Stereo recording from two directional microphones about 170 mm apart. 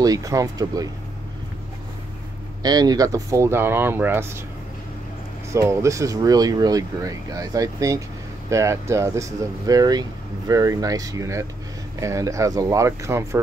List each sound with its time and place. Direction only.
0.0 s speech: 20° right (ahead or behind)
2.6 s speech: 25° right (ahead or behind)
5.5 s speech: 15° right (ahead or behind)